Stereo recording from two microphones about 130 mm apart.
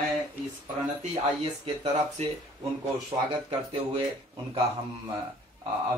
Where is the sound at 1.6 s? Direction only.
45° right (ahead or behind).